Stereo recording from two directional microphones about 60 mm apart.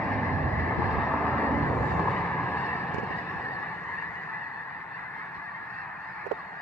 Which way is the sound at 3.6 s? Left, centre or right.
Left.